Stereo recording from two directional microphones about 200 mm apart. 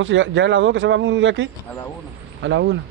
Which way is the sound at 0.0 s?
70° right (ahead or behind).